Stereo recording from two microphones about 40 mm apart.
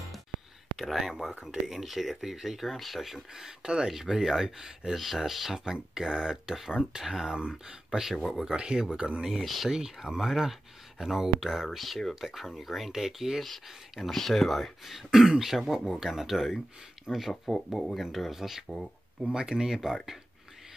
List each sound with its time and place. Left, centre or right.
0.7 s speech: centre
3.3 s speech: centre
4.9 s speech: centre
8.2 s speech: centre
8.5 s speech: right
9.4 s speech: centre
9.7 s speech: centre